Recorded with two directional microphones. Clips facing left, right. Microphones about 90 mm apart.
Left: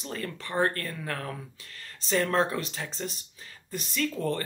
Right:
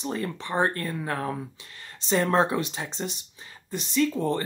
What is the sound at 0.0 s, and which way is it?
Speech, 25° right (ahead or behind).